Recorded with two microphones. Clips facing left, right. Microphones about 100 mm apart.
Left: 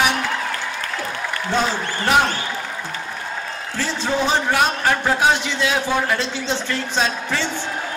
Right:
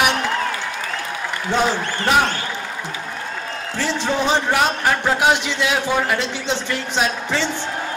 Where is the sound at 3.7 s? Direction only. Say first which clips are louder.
Right 1 dB; 20° right (ahead or behind).